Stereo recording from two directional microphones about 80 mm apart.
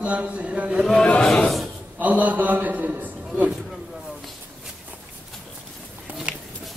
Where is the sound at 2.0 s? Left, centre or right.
Centre.